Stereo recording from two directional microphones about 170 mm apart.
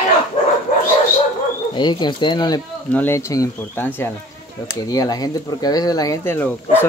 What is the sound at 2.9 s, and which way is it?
Speech, 10° left (ahead or behind).